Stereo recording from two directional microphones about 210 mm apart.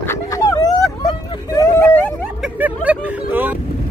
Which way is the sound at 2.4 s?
5° right (ahead or behind).